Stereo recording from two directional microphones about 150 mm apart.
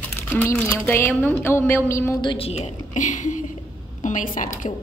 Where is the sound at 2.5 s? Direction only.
50° left (ahead or behind).